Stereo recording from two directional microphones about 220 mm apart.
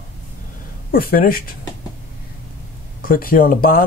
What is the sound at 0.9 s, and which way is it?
Speech, 40° left (ahead or behind).